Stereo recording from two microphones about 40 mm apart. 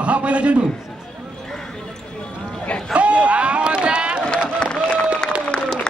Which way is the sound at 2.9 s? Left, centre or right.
Right.